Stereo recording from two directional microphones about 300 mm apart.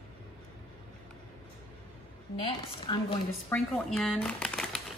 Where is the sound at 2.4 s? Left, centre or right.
Centre.